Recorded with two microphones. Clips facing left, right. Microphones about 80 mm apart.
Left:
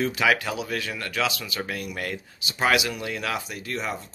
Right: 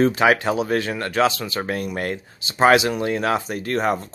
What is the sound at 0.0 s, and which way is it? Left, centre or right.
Speech, right.